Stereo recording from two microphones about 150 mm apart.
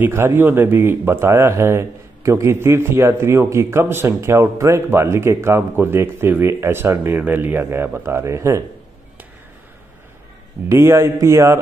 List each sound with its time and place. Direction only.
0.0 s speech: 15° right (ahead or behind)
10.7 s speech: 20° right (ahead or behind)